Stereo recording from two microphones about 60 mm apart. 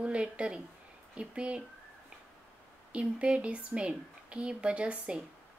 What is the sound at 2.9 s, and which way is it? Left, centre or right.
Speech, centre.